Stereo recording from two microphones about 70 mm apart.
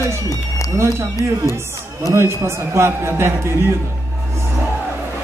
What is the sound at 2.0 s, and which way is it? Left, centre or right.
A man's voice, right.